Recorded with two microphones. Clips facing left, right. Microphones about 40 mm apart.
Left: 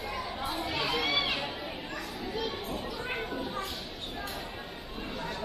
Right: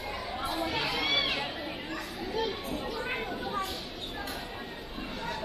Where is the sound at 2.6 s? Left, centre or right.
Right.